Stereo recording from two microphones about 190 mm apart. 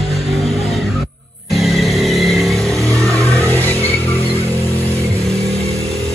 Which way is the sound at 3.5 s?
10° left (ahead or behind).